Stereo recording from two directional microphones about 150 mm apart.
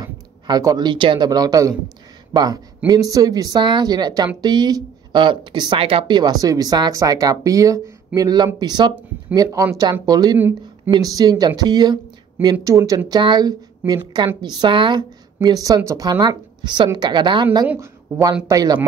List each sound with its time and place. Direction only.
0.0 s speech: 25° right (ahead or behind)
17.6 s speech: 20° right (ahead or behind)